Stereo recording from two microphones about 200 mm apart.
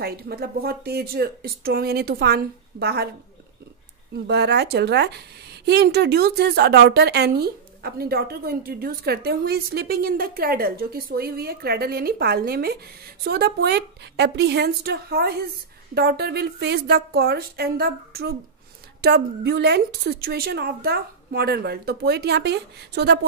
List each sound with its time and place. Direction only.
0.0 s a woman's voice: 50° right (ahead or behind)
4.1 s a woman's voice: 55° right (ahead or behind)